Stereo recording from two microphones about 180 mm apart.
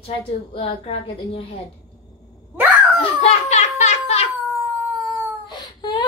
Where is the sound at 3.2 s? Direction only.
35° left (ahead or behind).